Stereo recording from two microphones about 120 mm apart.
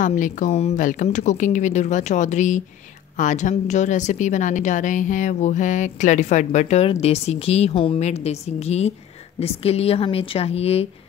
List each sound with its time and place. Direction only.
0.0 s a woman's voice: 90° left; by 8.0 s 50° left (ahead or behind)
8.0 s a woman's voice: 65° left (ahead or behind)